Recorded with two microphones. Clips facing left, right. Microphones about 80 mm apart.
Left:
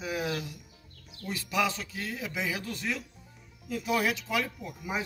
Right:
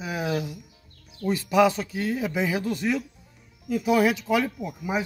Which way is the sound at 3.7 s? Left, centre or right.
Centre.